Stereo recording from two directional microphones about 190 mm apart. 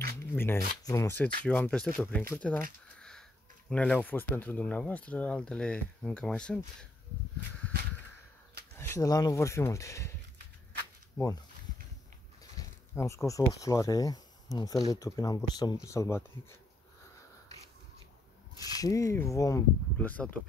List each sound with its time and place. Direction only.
0.2 s speech: 10° left (ahead or behind)
8.7 s speech: 15° left (ahead or behind)
12.5 s speech: 15° left (ahead or behind)
18.8 s speech: 15° left (ahead or behind)